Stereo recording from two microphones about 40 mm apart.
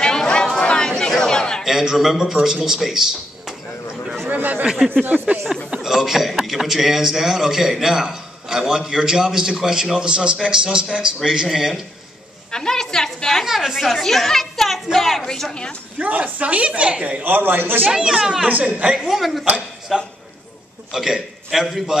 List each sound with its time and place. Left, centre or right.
0.0 s chatter: left
1.2 s a sound: centre
1.6 s a man's voice: centre
4.3 s a sound: right
5.8 s a man's voice: centre
12.4 s a woman's voice: centre
13.5 s a man's voice: centre
13.7 s a woman's voice: centre
16.0 s a woman's voice: right
17.2 s a man's voice: right
17.9 s a man's voice: centre
18.5 s a woman's voice: right
19.0 s a woman's voice: centre